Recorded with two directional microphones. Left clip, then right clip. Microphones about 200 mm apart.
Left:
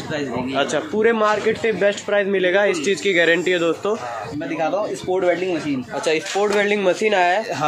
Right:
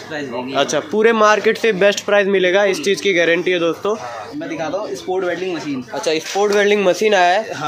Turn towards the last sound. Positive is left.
turn(degrees=-20)  # may be behind; listen again after turning